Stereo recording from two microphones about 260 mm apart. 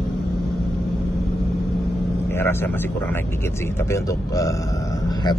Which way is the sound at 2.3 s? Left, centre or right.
Centre.